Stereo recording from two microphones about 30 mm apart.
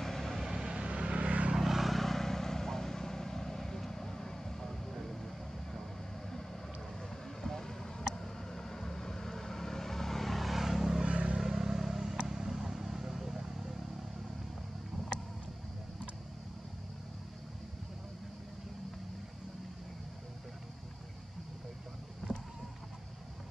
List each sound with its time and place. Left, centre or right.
0.0 s vehicle: centre
0.5 s vehicle: right
0.8 s vehicle: right
1.6 s vehicle: centre
2.0 s vehicle: centre
7.0 s vehicle: centre
11.1 s vehicle: right
11.3 s vehicle: centre